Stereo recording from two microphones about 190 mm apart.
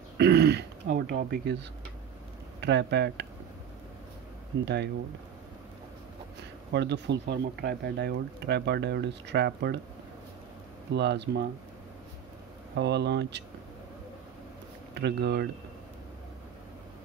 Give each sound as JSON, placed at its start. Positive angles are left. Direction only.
{"t": 0.2, "sound": "speech", "side_deg": -60}
{"t": 6.7, "sound": "speech", "side_deg": -65}
{"t": 10.9, "sound": "speech", "side_deg": -60}
{"t": 12.7, "sound": "speech", "side_deg": -65}
{"t": 15.0, "sound": "speech", "side_deg": -60}